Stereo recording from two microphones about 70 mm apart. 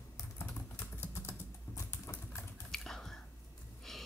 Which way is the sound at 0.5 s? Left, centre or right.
Left.